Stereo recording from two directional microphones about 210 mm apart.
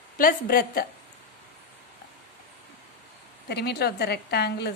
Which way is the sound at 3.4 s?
50° left (ahead or behind).